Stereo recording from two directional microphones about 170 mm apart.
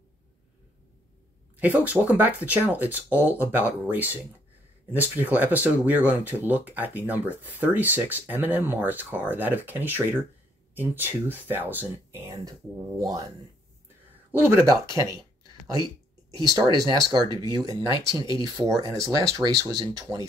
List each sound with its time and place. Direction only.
1.6 s speech: 10° right (ahead or behind)
14.5 s speech: 15° right (ahead or behind)
16.3 s speech: 20° right (ahead or behind)